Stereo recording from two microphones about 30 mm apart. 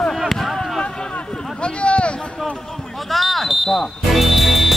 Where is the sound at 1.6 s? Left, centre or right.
Left.